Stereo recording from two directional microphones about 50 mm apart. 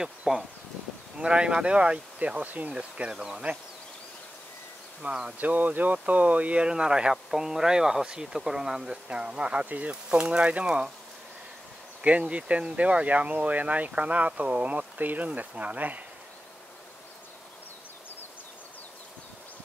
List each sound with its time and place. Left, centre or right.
0.0 s speech: centre; by 2.7 s right
2.7 s speech: right
5.0 s speech: right
12.0 s speech: right